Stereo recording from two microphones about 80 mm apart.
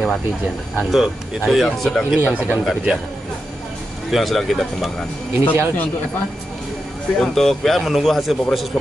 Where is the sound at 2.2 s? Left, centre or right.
Right.